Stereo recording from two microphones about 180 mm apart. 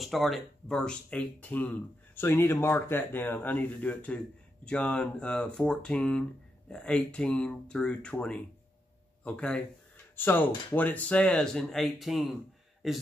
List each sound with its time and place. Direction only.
0.0 s a man's voice: centre (ahead or behind)